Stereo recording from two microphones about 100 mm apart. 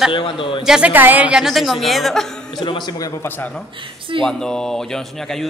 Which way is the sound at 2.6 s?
50° left (ahead or behind).